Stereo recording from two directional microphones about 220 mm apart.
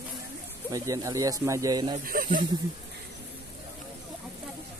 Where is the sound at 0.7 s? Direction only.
15° right (ahead or behind).